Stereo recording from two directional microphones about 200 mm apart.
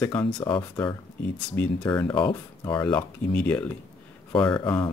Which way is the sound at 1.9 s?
20° left (ahead or behind).